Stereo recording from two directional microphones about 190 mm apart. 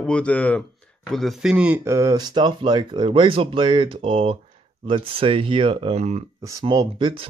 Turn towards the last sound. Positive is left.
turn(degrees=-25)  # may be behind; listen again after turning